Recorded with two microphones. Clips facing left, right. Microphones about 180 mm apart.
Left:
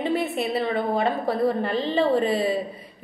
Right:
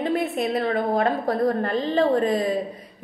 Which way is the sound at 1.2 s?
30° left (ahead or behind).